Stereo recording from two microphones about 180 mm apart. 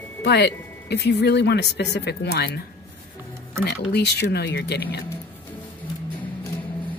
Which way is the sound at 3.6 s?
65° left (ahead or behind).